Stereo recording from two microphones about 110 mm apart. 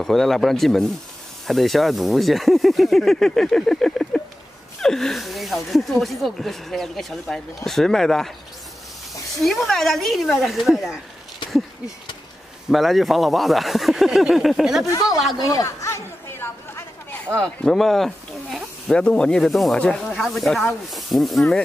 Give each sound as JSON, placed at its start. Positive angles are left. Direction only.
{"t": 0.0, "sound": "speech", "side_deg": 5}
{"t": 9.4, "sound": "speech", "side_deg": 0}
{"t": 12.6, "sound": "speech", "side_deg": 0}
{"t": 15.3, "sound": "chatter", "side_deg": 35}
{"t": 17.4, "sound": "speech", "side_deg": 5}